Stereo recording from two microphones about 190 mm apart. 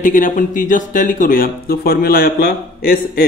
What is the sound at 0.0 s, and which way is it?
Speech, 45° left (ahead or behind).